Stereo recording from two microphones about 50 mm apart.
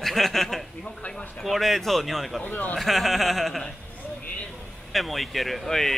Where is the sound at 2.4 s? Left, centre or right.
Left.